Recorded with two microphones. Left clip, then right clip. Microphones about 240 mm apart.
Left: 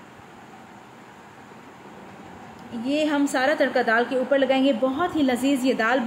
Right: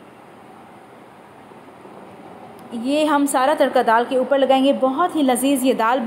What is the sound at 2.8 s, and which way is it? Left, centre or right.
A woman's voice, centre.